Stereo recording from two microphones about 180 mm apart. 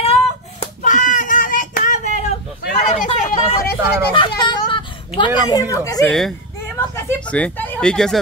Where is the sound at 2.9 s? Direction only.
40° left (ahead or behind).